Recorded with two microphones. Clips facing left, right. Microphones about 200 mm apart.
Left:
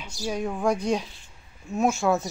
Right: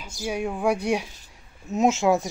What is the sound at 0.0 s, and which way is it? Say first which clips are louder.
Speech: right 1 dB; 10° right (ahead or behind).